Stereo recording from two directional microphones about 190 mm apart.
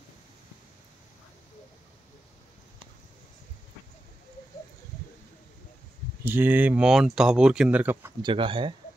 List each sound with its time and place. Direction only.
6.2 s speech: 10° right (ahead or behind)
8.2 s speech: 25° right (ahead or behind)